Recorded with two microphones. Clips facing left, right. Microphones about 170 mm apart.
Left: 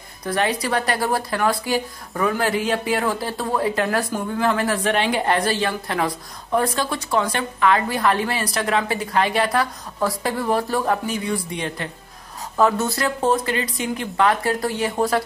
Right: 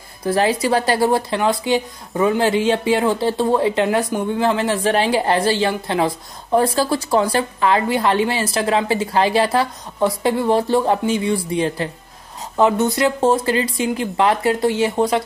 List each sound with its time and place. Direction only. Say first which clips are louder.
0.2 s speech: right 5 dB; 30° right (ahead or behind)
12.5 s speech: right 3 dB; 20° right (ahead or behind)